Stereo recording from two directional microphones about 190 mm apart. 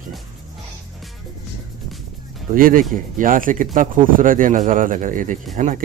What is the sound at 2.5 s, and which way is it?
Speech, 45° right (ahead or behind).